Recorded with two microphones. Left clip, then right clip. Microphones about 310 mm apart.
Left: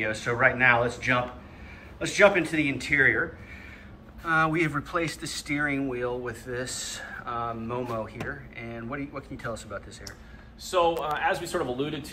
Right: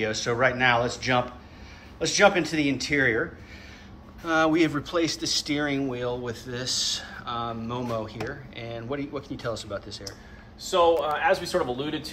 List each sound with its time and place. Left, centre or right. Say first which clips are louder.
0.0 s speech: even; centre
4.3 s speech: right 2 dB; centre
10.7 s a man's voice: right 3 dB; right